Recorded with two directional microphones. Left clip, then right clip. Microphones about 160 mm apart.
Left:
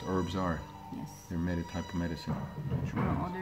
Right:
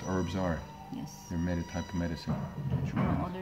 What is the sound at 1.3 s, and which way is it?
Speech, 5° right (ahead or behind).